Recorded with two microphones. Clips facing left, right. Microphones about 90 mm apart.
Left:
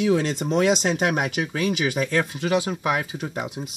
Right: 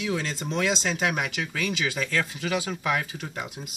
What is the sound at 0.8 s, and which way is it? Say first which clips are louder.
Speech: left 4 dB; 40° left (ahead or behind).